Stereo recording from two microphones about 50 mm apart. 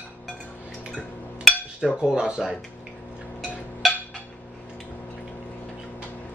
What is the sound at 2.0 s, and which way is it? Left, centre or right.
Speech, centre.